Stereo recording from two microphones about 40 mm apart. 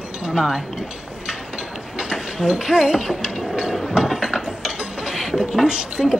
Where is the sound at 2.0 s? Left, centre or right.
Centre.